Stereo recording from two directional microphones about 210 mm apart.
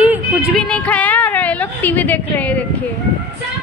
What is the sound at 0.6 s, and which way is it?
A woman's voice, 5° left (ahead or behind).